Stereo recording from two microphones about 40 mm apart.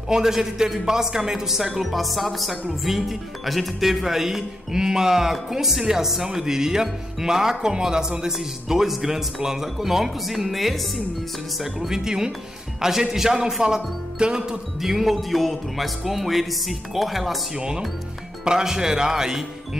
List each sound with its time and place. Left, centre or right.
0.1 s speech: centre
14.8 s speech: centre
17.6 s speech: right